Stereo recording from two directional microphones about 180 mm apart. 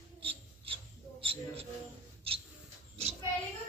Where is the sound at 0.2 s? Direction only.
30° right (ahead or behind).